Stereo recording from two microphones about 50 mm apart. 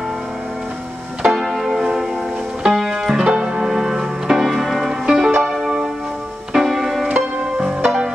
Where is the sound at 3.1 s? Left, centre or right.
Centre.